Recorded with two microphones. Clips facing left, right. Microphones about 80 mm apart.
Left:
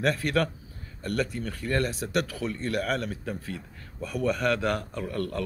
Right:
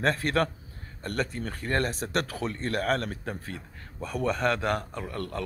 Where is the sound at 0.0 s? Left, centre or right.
Right.